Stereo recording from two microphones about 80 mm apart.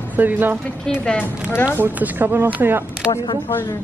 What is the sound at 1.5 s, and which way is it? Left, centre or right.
Speech, left.